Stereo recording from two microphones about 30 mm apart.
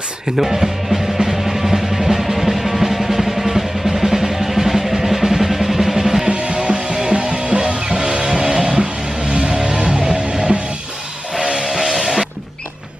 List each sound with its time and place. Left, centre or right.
0.4 s music: centre
6.2 s music: right
11.5 s music: centre